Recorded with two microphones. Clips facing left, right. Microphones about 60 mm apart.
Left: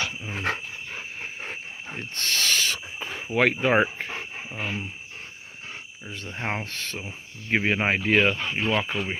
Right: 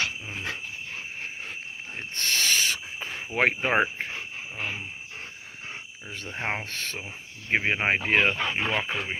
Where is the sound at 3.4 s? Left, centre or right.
Right.